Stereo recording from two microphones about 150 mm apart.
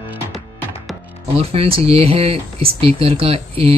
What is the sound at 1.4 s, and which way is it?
Speech, 40° right (ahead or behind).